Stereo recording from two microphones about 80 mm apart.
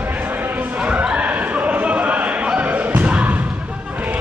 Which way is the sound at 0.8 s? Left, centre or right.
Centre.